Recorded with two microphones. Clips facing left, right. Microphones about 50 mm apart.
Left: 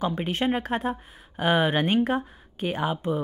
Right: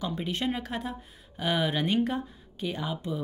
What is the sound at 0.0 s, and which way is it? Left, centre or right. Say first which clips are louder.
Speech: left 5 dB; left.